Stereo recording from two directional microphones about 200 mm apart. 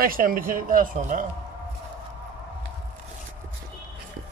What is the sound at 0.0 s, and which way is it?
Speech, 45° right (ahead or behind).